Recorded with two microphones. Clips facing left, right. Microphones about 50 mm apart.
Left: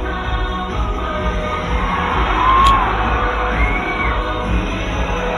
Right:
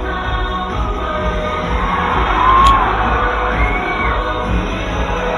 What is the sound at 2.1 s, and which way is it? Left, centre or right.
Music, centre.